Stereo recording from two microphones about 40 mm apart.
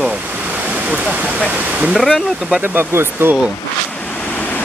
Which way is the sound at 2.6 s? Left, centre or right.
Right.